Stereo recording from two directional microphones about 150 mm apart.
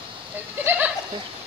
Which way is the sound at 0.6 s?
10° right (ahead or behind).